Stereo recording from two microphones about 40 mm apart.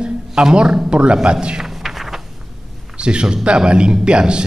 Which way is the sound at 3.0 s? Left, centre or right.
Right.